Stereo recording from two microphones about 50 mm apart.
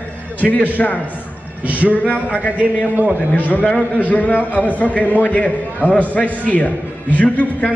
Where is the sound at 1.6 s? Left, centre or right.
Right.